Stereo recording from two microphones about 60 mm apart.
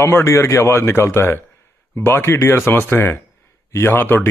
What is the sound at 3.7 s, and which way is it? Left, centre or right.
Speech, left.